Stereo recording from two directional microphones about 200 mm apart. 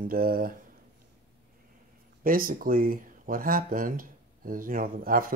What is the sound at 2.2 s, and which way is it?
Speech, 45° right (ahead or behind).